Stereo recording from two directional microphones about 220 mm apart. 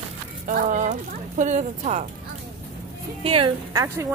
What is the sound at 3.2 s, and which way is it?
Speech, 25° right (ahead or behind).